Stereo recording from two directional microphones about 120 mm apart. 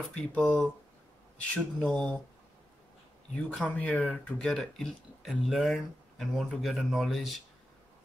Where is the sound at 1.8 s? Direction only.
10° left (ahead or behind).